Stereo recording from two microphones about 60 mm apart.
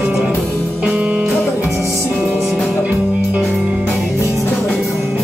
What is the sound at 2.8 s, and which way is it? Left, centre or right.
Music, right.